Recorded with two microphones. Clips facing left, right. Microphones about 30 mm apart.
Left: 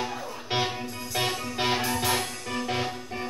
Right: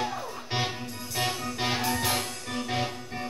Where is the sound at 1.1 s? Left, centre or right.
Centre.